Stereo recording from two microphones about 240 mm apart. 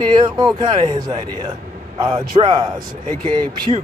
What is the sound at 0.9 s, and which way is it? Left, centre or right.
Speech, centre.